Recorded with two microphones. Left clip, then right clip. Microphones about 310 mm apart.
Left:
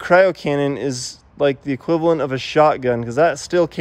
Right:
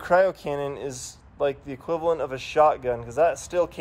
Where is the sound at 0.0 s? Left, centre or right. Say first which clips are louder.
Left 7 dB; left.